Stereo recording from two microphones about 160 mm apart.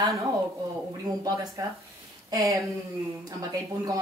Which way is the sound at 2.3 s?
20° right (ahead or behind).